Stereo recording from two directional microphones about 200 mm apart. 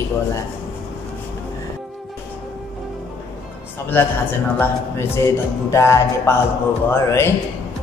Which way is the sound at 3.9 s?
10° left (ahead or behind).